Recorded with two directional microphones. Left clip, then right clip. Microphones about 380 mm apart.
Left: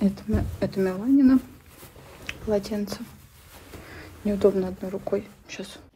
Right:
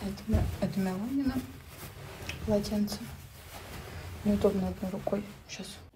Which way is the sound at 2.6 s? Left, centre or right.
Centre.